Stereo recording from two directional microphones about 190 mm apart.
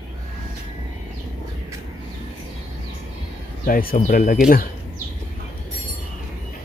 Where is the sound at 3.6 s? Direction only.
50° left (ahead or behind).